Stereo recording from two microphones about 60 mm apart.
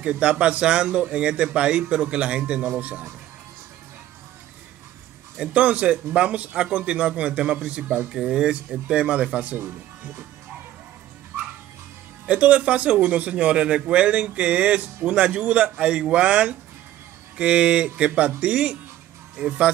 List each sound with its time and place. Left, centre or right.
0.0 s a man's voice: centre
5.4 s a man's voice: right
12.3 s a man's voice: right